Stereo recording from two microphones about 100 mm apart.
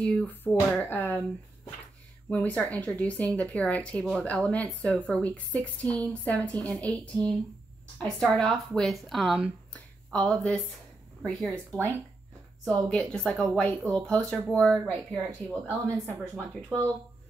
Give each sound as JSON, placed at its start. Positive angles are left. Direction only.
{"t": 0.0, "sound": "speech", "side_deg": 10}
{"t": 2.2, "sound": "a woman's voice", "side_deg": 15}
{"t": 10.1, "sound": "a woman's voice", "side_deg": 10}